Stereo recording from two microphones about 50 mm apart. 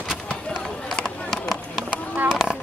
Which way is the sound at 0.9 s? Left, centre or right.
Centre.